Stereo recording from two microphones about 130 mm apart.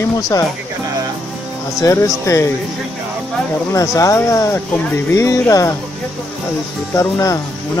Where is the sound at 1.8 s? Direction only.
25° left (ahead or behind).